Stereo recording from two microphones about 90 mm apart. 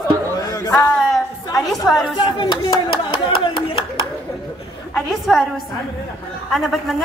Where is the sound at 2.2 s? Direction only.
55° left (ahead or behind); by 3.9 s 75° left (ahead or behind).